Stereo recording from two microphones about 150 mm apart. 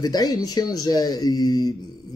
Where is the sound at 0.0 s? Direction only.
25° left (ahead or behind).